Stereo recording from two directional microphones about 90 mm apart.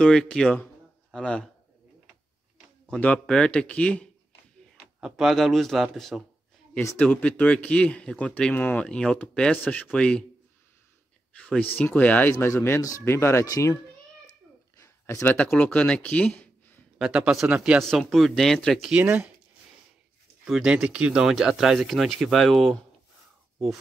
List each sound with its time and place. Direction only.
0.0 s speech: 5° left (ahead or behind)
3.0 s speech: 10° left (ahead or behind)
5.0 s speech: 5° right (ahead or behind)
7.0 s speech: 15° left (ahead or behind)
11.3 s speech: 10° left (ahead or behind)
11.6 s a child's voice: 20° left (ahead or behind)
14.8 s a sound: 35° left (ahead or behind)
15.2 s speech: 15° left (ahead or behind)
17.0 s speech: 5° right (ahead or behind)
17.7 s speech: centre (ahead or behind)
18.9 s speech: 15° right (ahead or behind)
20.4 s speech: 5° right (ahead or behind)